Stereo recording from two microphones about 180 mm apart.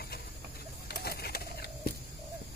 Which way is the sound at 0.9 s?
60° left (ahead or behind).